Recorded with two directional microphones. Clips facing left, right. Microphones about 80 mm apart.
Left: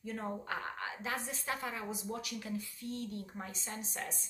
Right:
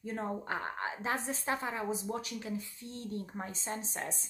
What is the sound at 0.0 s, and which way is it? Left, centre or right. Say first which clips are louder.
A woman's voice: right 3 dB; right.